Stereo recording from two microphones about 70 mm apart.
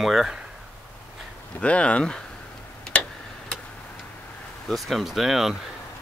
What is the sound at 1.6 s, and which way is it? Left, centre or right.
Speech, centre.